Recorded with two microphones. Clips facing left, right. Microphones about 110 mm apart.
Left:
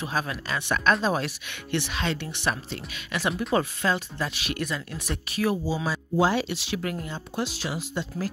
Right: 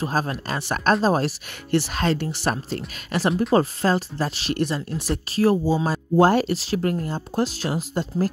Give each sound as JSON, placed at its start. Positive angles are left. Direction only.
{"t": 0.0, "sound": "speech", "side_deg": -40}